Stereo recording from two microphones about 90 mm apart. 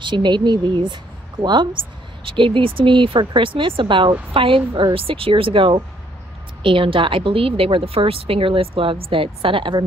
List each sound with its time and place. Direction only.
0.0 s speech: 60° right (ahead or behind)
2.2 s speech: 70° right (ahead or behind)
4.3 s speech: 80° right
4.9 s a woman's voice: 90° right; by 9.8 s 70° right (ahead or behind)